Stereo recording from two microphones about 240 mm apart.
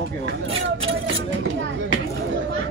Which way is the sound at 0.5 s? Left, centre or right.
Right.